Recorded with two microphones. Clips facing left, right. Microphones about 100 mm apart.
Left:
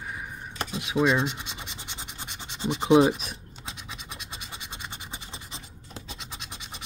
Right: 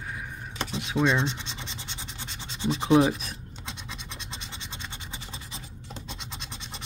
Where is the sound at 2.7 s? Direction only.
20° left (ahead or behind).